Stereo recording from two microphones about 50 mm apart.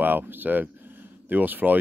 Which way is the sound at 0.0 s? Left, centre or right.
Right.